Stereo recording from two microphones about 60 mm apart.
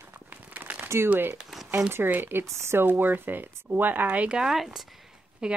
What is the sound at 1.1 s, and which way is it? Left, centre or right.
Speech, right.